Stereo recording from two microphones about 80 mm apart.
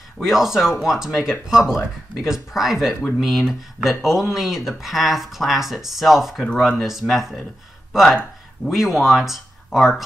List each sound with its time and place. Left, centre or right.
0.2 s speech: centre